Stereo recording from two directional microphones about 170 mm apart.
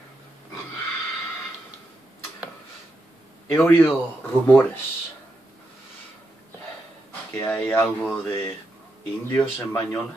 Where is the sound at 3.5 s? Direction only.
10° left (ahead or behind).